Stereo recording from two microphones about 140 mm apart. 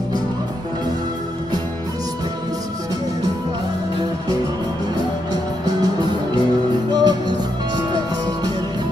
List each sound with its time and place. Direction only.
7.0 s music: 30° right (ahead or behind)